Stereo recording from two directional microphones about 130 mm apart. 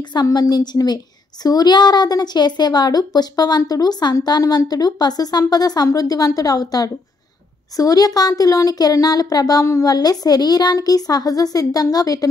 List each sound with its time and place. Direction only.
0.1 s a woman's voice: 30° left (ahead or behind)